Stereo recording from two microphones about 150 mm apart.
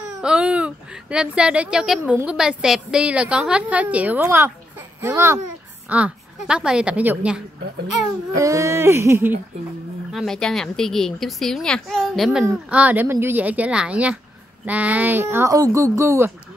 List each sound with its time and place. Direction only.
0.2 s a woman's voice: 5° right (ahead or behind)
8.4 s speech: 20° right (ahead or behind)
10.1 s a woman's voice: 5° left (ahead or behind); by 16.3 s 20° right (ahead or behind)